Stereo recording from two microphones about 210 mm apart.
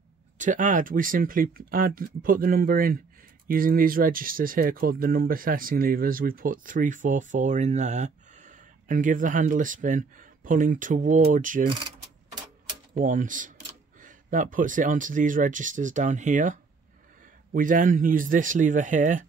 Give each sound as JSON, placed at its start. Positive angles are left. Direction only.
{"t": 0.4, "sound": "speech", "side_deg": -40}
{"t": 12.9, "sound": "speech", "side_deg": -40}